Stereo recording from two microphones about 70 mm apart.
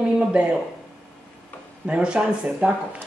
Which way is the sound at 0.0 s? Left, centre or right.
Centre.